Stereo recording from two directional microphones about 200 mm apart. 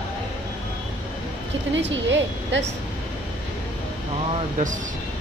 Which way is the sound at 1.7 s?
65° right (ahead or behind).